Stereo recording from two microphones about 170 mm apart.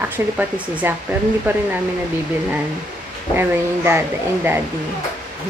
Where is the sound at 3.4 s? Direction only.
15° right (ahead or behind).